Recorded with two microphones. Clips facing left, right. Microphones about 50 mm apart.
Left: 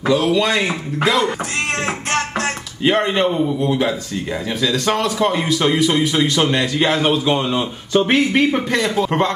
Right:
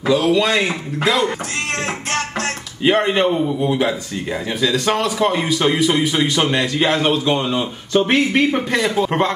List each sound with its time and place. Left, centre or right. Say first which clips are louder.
0.0 s a man's voice: even; centre
1.8 s music: left 1 dB; left
2.8 s a man's voice: right 1 dB; centre